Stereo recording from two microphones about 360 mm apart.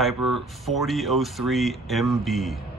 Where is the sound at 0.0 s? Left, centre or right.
Centre.